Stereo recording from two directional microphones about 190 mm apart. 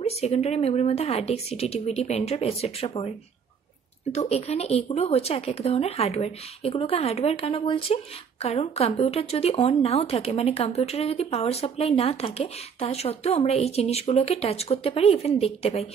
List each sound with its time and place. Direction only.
0.2 s speech: 35° left (ahead or behind)
4.1 s speech: 35° left (ahead or behind)